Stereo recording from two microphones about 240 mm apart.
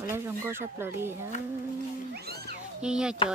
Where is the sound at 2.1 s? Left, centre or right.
Right.